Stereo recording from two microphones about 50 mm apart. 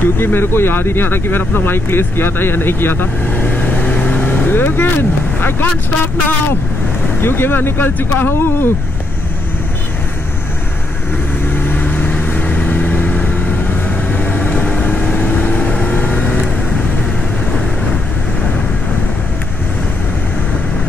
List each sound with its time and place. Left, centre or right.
0.0 s speech: left
3.8 s vehicle: left
7.2 s speech: left
11.6 s vehicle: left